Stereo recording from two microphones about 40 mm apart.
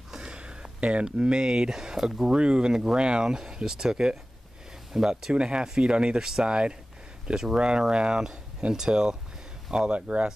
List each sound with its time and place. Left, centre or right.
0.3 s a sound: right
1.0 s speech: right
5.3 s speech: right
9.9 s speech: right